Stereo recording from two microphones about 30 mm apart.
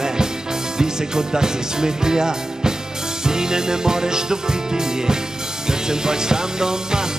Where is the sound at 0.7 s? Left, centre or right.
Right.